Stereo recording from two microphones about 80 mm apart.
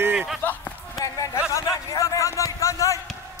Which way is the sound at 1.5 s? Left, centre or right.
Left.